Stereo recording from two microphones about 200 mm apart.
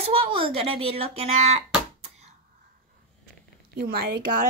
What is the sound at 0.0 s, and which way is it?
A woman's voice, 25° right (ahead or behind).